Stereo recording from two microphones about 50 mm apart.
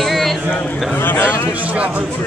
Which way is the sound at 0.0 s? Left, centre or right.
Centre.